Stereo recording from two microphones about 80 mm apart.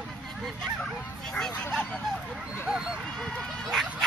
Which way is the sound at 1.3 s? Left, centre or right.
Centre.